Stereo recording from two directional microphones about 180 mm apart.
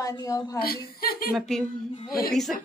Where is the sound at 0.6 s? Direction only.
55° left (ahead or behind).